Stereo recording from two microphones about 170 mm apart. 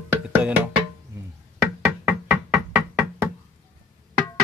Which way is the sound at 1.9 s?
Centre (ahead or behind).